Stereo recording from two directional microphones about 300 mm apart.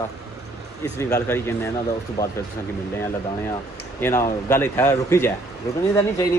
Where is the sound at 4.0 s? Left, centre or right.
Centre.